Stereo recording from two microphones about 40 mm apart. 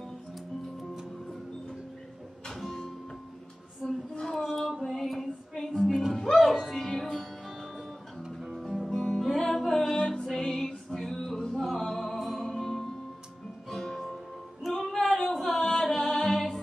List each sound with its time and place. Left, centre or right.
2.5 s music: centre
4.1 s a sound: centre
4.5 s female singing: centre
5.9 s music: centre
6.2 s music: centre
8.9 s music: centre